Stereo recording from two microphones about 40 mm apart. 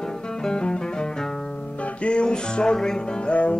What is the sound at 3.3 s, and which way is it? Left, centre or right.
Music, left.